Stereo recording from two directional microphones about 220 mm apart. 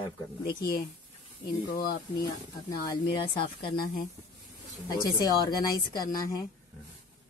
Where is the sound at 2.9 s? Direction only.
25° left (ahead or behind).